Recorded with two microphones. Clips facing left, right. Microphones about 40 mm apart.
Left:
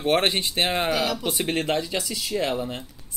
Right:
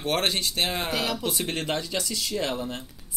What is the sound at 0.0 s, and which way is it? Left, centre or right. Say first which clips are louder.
Speech: left 4 dB; left.